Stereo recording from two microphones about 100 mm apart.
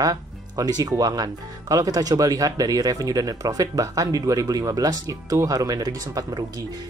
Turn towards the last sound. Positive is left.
turn(degrees=-40)  # may be behind; listen again after turning